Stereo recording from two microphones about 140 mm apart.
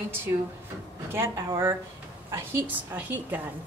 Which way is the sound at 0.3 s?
25° right (ahead or behind).